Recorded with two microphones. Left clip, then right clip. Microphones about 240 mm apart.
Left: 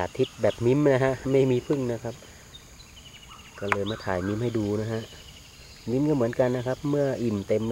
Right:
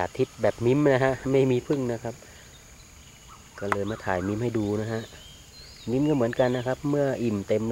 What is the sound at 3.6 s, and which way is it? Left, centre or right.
Speech, centre.